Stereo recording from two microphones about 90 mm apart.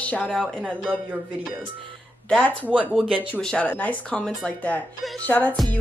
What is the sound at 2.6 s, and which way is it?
Speech, 15° right (ahead or behind).